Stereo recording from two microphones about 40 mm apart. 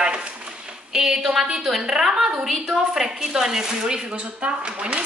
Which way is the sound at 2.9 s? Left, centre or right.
Centre.